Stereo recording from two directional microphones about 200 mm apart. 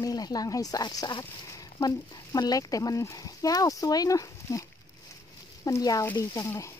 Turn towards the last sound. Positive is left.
turn(degrees=15)  # may be behind; listen again after turning